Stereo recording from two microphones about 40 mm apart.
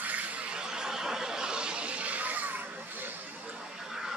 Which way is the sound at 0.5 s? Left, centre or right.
Centre.